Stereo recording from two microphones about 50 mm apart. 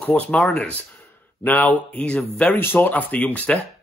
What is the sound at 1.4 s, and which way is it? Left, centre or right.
Speech, left.